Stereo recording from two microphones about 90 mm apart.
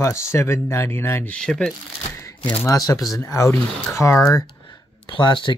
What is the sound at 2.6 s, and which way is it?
Speech, 40° left (ahead or behind).